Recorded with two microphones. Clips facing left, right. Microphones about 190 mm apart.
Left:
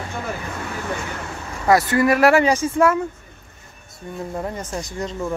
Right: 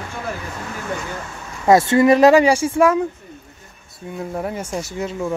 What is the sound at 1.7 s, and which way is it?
Speech, 25° right (ahead or behind).